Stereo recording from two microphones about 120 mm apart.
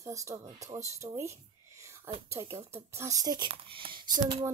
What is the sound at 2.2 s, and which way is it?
Speech, 25° right (ahead or behind).